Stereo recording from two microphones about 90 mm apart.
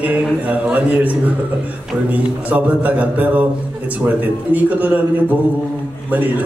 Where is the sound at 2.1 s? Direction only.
15° right (ahead or behind).